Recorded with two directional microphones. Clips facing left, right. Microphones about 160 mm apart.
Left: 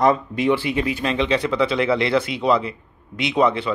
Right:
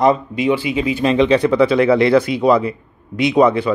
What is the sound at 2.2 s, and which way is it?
Speech, 45° right (ahead or behind).